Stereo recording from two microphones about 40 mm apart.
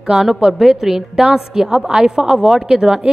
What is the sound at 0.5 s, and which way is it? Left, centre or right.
A woman's voice, centre.